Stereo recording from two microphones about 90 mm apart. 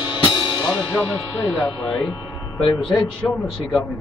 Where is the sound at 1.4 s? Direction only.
50° left (ahead or behind).